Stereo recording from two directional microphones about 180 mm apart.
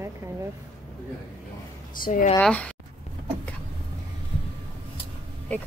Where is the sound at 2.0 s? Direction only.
45° left (ahead or behind).